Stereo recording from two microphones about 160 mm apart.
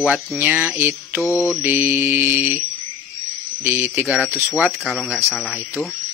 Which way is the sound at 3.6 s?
10° right (ahead or behind).